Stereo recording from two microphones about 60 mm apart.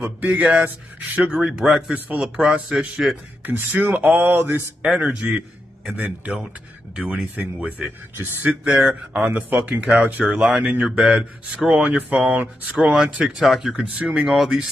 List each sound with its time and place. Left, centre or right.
0.2 s speech: right
1.3 s speech: centre
3.4 s speech: right
4.2 s speech: right
4.9 s speech: centre
5.9 s speech: right
8.2 s speech: right; by 10.6 s centre
10.6 s speech: right
12.9 s speech: centre